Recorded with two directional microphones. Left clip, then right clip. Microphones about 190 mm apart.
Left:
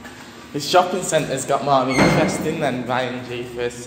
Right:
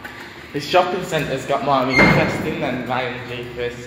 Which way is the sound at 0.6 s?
20° left (ahead or behind).